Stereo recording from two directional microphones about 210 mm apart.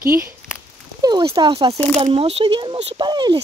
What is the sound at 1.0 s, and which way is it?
Speech, 20° right (ahead or behind).